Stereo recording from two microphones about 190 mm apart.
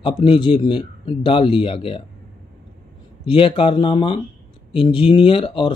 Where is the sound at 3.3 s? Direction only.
30° left (ahead or behind).